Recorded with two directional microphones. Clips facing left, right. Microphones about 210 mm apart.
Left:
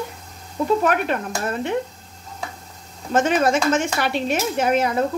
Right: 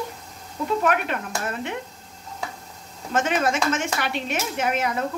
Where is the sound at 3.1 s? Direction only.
35° left (ahead or behind).